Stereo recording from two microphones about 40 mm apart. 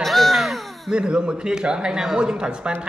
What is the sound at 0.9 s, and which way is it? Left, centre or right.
A woman's voice, right.